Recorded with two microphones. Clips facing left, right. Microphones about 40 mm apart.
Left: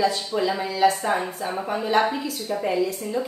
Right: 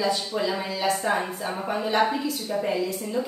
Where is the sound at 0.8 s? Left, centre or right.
Centre.